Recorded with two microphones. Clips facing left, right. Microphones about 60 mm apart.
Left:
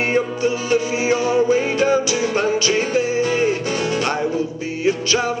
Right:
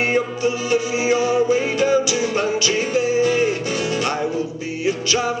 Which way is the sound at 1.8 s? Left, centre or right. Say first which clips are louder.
Even; left.